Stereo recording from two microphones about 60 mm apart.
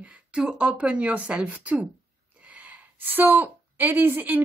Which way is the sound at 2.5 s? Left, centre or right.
Right.